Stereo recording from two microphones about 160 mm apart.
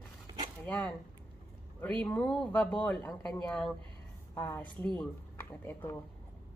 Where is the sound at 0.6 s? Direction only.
10° left (ahead or behind).